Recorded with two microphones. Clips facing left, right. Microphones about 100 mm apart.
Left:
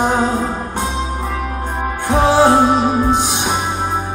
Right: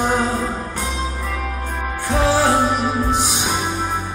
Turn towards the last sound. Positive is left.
turn(degrees=15)  # may be behind; listen again after turning